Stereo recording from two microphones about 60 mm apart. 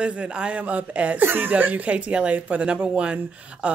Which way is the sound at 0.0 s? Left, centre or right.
Centre.